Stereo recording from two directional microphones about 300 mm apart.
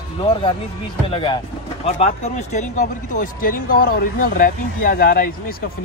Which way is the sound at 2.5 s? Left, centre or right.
Left.